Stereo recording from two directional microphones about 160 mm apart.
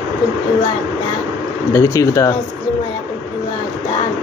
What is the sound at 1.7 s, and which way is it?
Speech, 20° left (ahead or behind).